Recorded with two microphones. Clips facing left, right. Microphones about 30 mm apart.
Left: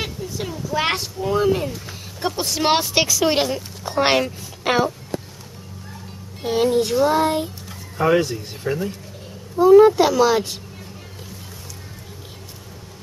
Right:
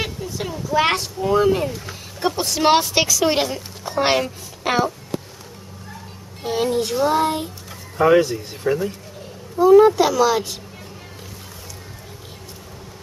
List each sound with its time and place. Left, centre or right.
0.0 s speech: centre
3.9 s a woman's voice: centre
6.4 s speech: centre